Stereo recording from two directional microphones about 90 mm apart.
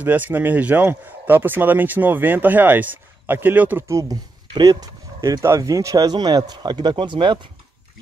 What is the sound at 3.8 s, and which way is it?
Speech, 35° right (ahead or behind).